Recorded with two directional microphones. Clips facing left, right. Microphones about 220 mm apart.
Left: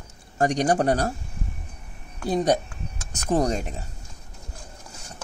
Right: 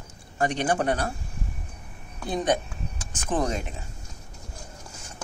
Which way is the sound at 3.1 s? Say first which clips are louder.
Left 4 dB; 40° left (ahead or behind).